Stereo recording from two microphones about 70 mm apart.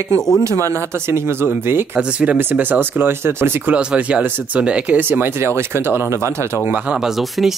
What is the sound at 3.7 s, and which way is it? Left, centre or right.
Speech, centre.